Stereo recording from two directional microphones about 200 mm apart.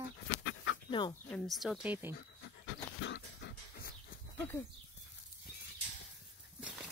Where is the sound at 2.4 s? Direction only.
65° left (ahead or behind).